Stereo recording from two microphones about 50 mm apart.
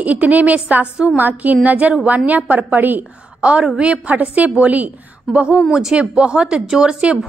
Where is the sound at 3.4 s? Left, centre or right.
Right.